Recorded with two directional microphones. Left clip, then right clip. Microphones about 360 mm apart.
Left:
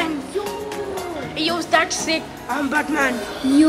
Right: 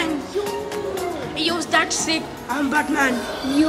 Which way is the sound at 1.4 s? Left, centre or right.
Centre.